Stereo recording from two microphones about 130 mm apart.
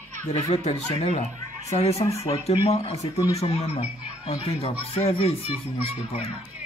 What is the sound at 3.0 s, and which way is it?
Speech, 25° left (ahead or behind).